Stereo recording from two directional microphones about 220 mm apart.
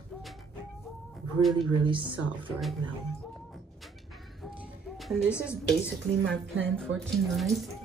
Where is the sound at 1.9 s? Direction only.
20° right (ahead or behind).